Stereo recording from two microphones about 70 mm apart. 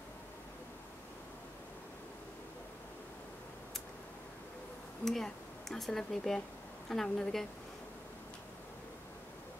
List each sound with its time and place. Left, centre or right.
5.0 s a woman's voice: centre